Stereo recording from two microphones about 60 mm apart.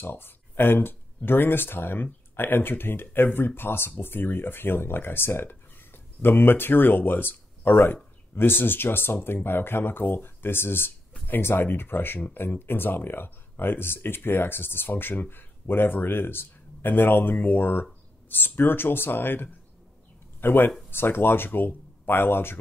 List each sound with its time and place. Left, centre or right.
0.0 s speech: left